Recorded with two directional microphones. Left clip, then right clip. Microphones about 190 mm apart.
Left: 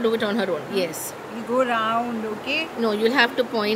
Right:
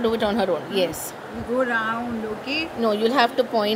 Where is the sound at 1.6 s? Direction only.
45° left (ahead or behind).